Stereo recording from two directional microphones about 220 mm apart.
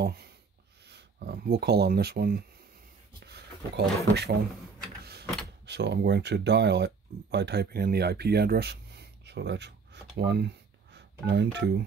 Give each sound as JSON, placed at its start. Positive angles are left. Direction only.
{"t": 0.0, "sound": "writing", "side_deg": -45}
{"t": 0.8, "sound": "speech", "side_deg": -50}
{"t": 3.2, "sound": "a sound", "side_deg": -50}
{"t": 4.1, "sound": "a man's voice", "side_deg": -45}
{"t": 5.7, "sound": "speech", "side_deg": -50}